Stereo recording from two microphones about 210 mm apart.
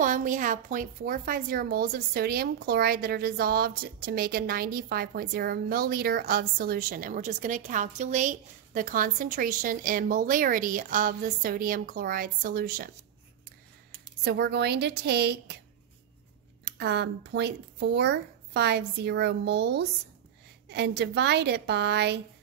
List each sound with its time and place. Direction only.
0.0 s a woman's voice: 40° right (ahead or behind)
14.2 s a woman's voice: 50° right (ahead or behind)
16.6 s a woman's voice: 55° right (ahead or behind)